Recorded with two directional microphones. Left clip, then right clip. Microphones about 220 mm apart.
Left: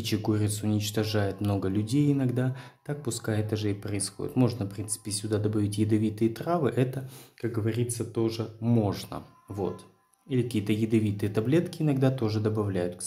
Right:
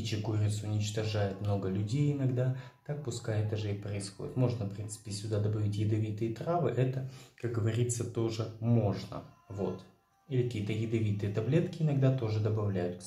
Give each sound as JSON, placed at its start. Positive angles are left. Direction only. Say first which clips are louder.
{"t": 0.0, "sound": "speech", "louder": "left 8 dB", "side_deg": 50}
{"t": 7.5, "sound": "speech", "louder": "left 3 dB", "side_deg": 25}
{"t": 8.8, "sound": "speech", "louder": "left 4 dB", "side_deg": 40}
{"t": 10.3, "sound": "speech", "louder": "left 6 dB", "side_deg": 50}